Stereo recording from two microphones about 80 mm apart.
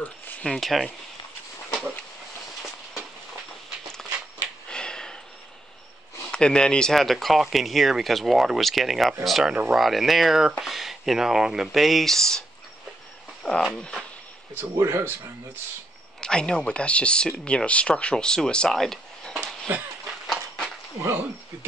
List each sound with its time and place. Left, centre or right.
0.0 s speech: centre
0.6 s speech: centre
4.6 s a sound: centre
6.3 s speech: centre
13.4 s a sound: centre
13.7 s speech: centre
14.6 s speech: right
16.2 s speech: centre
20.2 s a sound: centre
21.0 s speech: right